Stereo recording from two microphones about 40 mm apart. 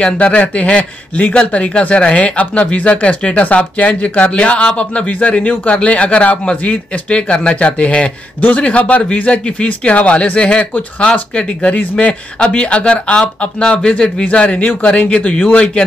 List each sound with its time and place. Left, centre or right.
0.0 s speech: left